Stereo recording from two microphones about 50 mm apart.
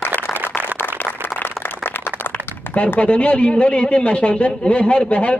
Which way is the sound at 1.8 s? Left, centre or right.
Left.